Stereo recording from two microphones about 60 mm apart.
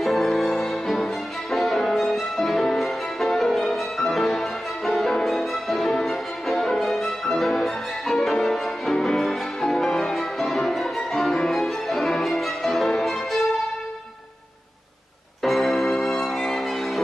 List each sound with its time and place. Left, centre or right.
0.0 s music: centre
15.4 s music: centre